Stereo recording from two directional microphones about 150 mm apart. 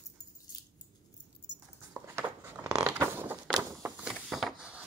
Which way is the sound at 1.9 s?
15° right (ahead or behind).